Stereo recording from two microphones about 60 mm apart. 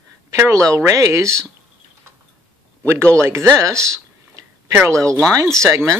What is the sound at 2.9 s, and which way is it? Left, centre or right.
Speech, right.